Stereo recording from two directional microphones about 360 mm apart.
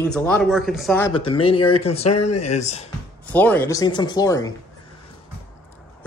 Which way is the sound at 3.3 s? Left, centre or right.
Centre.